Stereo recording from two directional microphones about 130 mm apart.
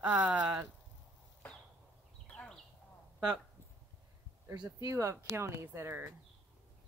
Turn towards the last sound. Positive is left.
turn(degrees=-20)  # may be behind; listen again after turning